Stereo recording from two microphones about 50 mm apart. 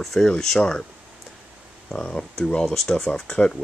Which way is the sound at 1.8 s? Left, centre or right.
Centre.